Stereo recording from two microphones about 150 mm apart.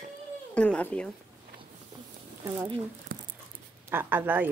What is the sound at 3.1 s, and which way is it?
Dog, 70° right (ahead or behind).